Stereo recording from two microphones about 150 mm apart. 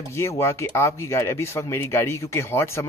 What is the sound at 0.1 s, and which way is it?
Speech, 20° left (ahead or behind).